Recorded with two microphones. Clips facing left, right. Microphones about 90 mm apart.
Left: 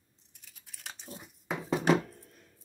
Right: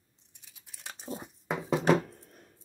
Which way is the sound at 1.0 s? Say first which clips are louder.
Right 11 dB; 30° right (ahead or behind).